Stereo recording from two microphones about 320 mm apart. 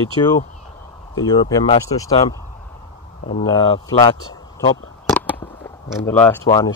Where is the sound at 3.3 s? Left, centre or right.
Centre.